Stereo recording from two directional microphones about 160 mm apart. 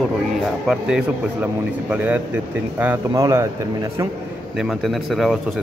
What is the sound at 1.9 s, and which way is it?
A man's voice, 10° right (ahead or behind).